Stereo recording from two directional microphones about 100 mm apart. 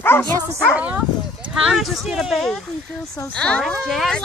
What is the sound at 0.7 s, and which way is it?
Speech, 15° right (ahead or behind).